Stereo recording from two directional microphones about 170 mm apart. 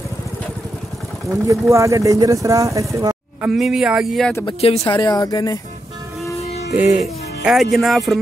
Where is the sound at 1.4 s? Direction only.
20° right (ahead or behind).